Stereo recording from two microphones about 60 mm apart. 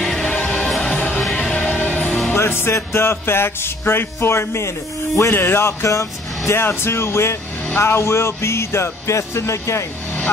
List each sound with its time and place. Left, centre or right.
0.2 s music: left
2.3 s music: left
5.3 s music: left
6.6 s music: left